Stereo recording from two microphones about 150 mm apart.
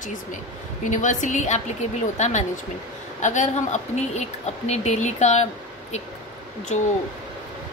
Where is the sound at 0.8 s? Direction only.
55° left (ahead or behind).